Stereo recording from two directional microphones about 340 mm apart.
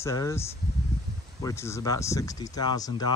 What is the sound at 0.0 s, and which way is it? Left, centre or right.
Speech, centre.